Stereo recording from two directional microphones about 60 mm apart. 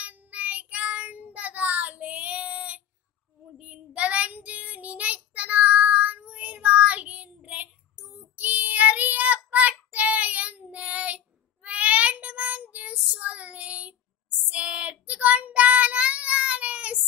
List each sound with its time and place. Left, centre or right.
0.0 s child singing: right